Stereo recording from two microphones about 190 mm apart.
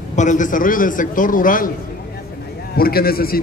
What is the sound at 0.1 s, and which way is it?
A man's voice, 40° left (ahead or behind).